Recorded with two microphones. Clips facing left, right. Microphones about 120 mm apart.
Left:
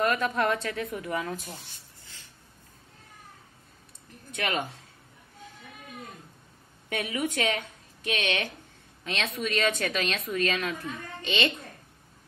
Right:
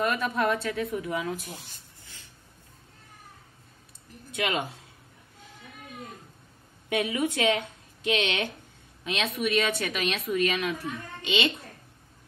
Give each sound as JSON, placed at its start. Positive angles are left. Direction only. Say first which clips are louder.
{"t": 0.0, "sound": "speech", "louder": "left 1 dB", "side_deg": -5}
{"t": 4.4, "sound": "speech", "louder": "right 1 dB", "side_deg": -15}
{"t": 6.9, "sound": "speech", "louder": "right 3 dB", "side_deg": -15}